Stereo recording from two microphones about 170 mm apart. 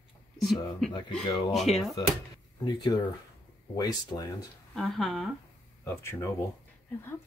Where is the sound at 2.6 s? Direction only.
25° left (ahead or behind).